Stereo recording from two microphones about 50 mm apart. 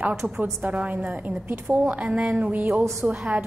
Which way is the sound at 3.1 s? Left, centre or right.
Centre.